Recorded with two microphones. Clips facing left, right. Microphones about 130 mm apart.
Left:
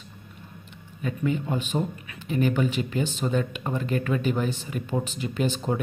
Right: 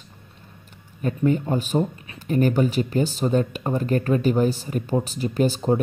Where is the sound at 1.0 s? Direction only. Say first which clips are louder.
Right 5 dB; 45° right (ahead or behind).